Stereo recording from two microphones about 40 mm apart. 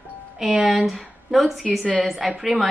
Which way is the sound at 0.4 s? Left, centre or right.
Centre.